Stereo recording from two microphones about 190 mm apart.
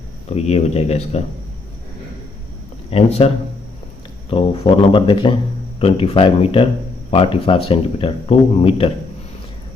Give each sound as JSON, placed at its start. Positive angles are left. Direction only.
{"t": 0.3, "sound": "speech", "side_deg": 35}
{"t": 2.9, "sound": "speech", "side_deg": 30}
{"t": 4.3, "sound": "speech", "side_deg": 30}